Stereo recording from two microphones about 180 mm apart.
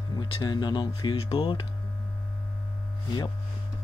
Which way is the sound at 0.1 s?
25° left (ahead or behind).